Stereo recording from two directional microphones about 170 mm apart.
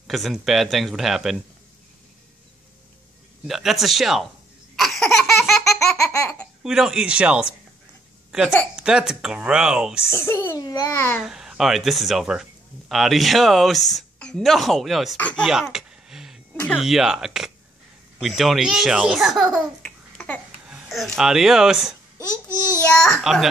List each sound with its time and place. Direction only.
0.0 s speech: centre (ahead or behind)
3.4 s speech: centre (ahead or behind)
4.7 s a sound: centre (ahead or behind)
5.6 s laughter: 20° left (ahead or behind)
6.6 s speech: 5° right (ahead or behind)
8.7 s speech: 5° right (ahead or behind)
10.0 s a child's voice: 15° left (ahead or behind)
11.1 s speech: 5° right (ahead or behind)
15.7 s a sound: 5° right (ahead or behind)
16.7 s speech: centre (ahead or behind)
22.8 s speech: 5° left (ahead or behind)